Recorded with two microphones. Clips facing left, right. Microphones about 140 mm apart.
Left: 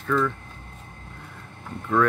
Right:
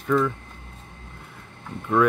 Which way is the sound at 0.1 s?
15° right (ahead or behind).